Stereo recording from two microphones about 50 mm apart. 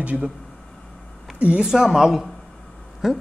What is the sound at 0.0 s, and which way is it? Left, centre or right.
Speech, right.